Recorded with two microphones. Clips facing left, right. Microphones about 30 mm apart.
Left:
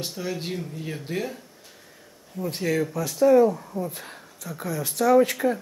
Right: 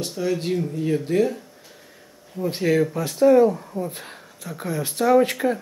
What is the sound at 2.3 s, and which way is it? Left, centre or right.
Speech, right.